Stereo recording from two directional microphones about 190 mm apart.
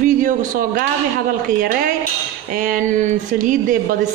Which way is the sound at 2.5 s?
45° right (ahead or behind).